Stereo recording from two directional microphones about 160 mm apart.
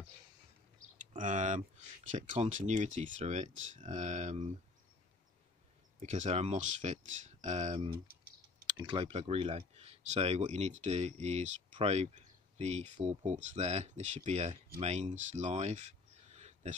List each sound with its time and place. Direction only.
0.9 s speech: 50° right (ahead or behind)
5.9 s speech: 50° right (ahead or behind)
8.6 s speech: 25° right (ahead or behind); by 16.7 s 45° right (ahead or behind)